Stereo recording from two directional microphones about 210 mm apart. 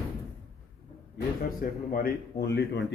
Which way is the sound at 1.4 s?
45° left (ahead or behind).